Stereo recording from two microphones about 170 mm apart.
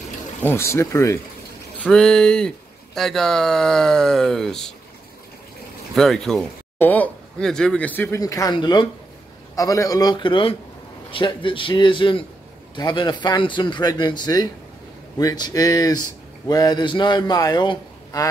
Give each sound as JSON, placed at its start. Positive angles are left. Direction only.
{"t": 0.4, "sound": "speech", "side_deg": 15}
{"t": 1.8, "sound": "speech", "side_deg": 5}
{"t": 5.9, "sound": "speech", "side_deg": 5}
{"t": 8.2, "sound": "a man's voice", "side_deg": 20}